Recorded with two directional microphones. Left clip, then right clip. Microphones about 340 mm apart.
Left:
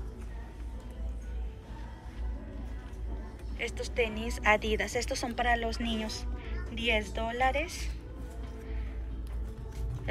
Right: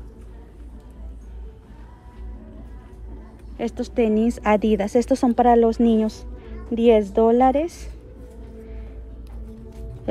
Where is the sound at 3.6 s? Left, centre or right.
Centre.